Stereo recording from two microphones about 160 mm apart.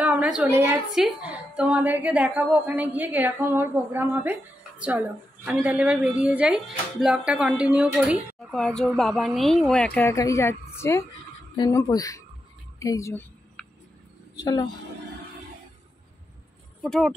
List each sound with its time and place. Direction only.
0.0 s a sound: 10° right (ahead or behind)
0.5 s a woman's voice: 20° right (ahead or behind)
0.9 s a woman's voice: 5° right (ahead or behind); by 13.2 s 20° left (ahead or behind)
13.6 s a sound: 10° left (ahead or behind)
14.3 s speech: 25° left (ahead or behind)
16.8 s speech: centre (ahead or behind)